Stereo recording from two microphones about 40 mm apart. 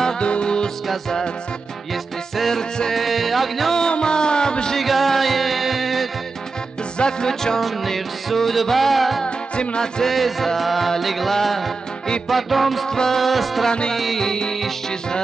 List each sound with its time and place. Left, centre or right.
0.2 s music: left
2.3 s music: centre
3.7 s music: centre
4.7 s music: centre
7.0 s music: centre
7.6 s music: centre
9.2 s music: left
10.0 s music: centre
12.8 s music: centre
13.2 s music: centre
13.7 s music: centre
13.9 s music: centre
14.2 s music: centre